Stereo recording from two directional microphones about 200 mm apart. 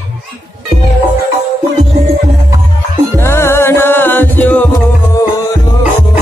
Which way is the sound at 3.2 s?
15° left (ahead or behind).